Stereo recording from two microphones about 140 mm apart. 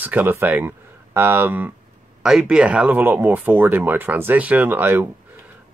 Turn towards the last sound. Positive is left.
turn(degrees=-15)  # may be behind; listen again after turning